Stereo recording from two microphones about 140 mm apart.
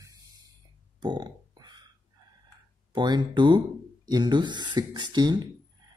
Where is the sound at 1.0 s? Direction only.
30° right (ahead or behind).